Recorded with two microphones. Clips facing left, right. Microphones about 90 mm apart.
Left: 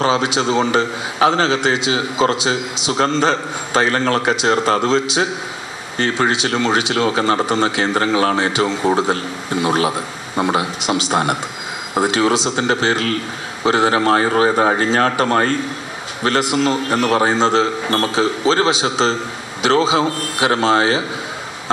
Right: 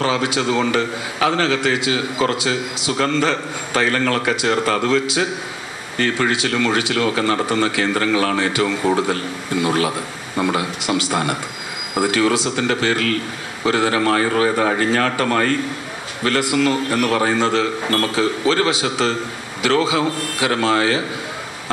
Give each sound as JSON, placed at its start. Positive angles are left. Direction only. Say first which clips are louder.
{"t": 0.0, "sound": "a man's voice", "louder": "left 3 dB", "side_deg": 20}